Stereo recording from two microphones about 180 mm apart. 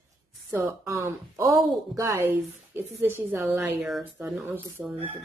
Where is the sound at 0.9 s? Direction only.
15° right (ahead or behind).